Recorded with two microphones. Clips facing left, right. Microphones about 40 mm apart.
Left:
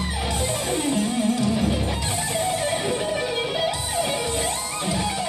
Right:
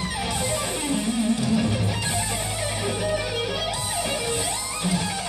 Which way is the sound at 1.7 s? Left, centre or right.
Left.